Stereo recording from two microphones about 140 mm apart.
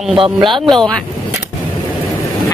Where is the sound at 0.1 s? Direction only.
40° right (ahead or behind).